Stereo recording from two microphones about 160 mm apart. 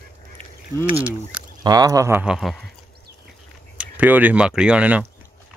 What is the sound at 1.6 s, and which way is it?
Speech, 25° right (ahead or behind).